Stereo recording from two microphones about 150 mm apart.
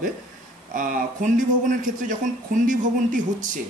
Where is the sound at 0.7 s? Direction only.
60° right (ahead or behind).